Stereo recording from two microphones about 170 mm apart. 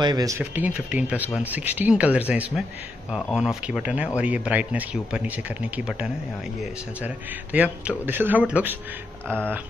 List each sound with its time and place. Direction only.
0.0 s speech: 25° right (ahead or behind)
0.4 s speech: 10° right (ahead or behind)
3.1 s speech: centre (ahead or behind)
7.5 s speech: 10° right (ahead or behind)